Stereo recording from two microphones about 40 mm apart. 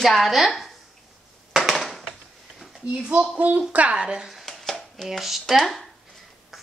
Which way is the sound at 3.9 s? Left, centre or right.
Right.